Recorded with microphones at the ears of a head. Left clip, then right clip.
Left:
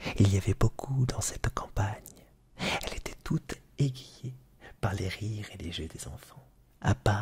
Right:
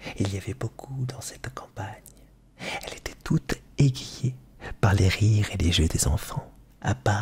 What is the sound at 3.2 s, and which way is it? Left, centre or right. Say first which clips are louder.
Speech: right 11 dB; right.